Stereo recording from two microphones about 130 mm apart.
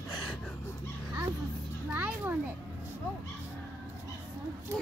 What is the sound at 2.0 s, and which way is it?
Children playing, 15° right (ahead or behind).